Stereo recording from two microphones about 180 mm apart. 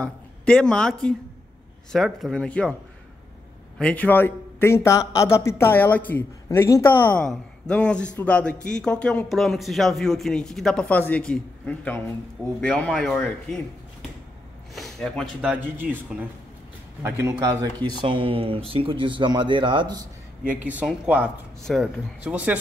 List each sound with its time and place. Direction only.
0.0 s a man's voice: 5° left (ahead or behind)
3.7 s a man's voice: 5° left (ahead or behind)
14.8 s speech: centre (ahead or behind)
15.5 s speech: 10° right (ahead or behind); by 20.0 s 25° right (ahead or behind)
20.6 s a man's voice: 5° right (ahead or behind)